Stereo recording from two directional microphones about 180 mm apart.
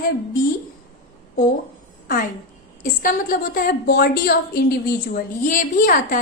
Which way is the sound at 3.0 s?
50° left (ahead or behind).